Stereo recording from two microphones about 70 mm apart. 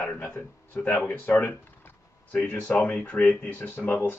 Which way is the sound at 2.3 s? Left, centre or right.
Centre.